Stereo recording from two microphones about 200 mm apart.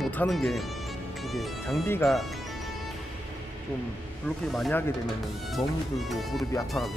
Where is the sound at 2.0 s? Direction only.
Centre (ahead or behind).